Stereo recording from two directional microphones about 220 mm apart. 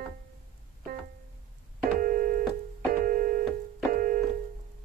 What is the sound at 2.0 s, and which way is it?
Keyboard, 40° right (ahead or behind).